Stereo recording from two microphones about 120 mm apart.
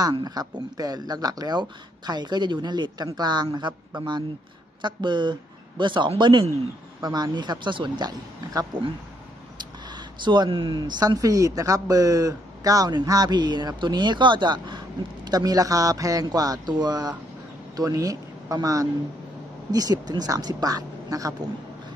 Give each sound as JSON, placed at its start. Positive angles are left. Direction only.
{"t": 0.0, "sound": "speech", "side_deg": -35}